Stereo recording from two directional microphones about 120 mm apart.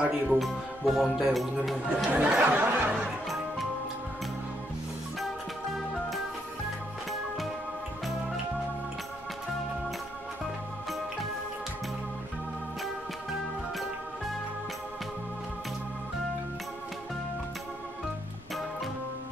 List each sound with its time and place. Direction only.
0.0 s a man's voice: centre (ahead or behind)
2.0 s a sound: 10° right (ahead or behind)
2.9 s music: centre (ahead or behind)
5.2 s music: centre (ahead or behind)
12.8 s music: centre (ahead or behind)